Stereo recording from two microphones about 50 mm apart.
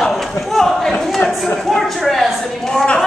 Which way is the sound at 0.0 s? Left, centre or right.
Centre.